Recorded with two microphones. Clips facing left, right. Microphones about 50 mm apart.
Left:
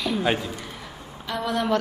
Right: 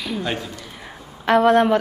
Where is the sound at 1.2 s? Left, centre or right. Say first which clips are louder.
Right 12 dB; right.